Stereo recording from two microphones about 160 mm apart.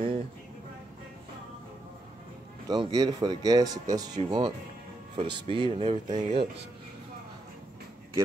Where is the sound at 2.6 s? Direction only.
25° right (ahead or behind).